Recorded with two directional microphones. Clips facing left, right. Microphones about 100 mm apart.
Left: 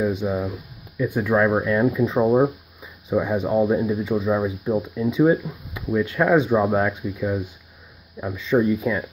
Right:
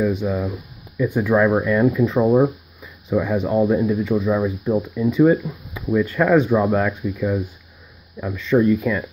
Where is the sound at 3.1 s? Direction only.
20° left (ahead or behind).